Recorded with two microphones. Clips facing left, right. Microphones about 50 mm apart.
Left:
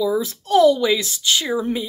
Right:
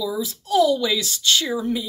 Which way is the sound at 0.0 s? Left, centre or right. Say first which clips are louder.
Left 5 dB; left.